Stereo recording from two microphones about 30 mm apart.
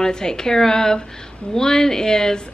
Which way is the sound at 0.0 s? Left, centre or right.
Left.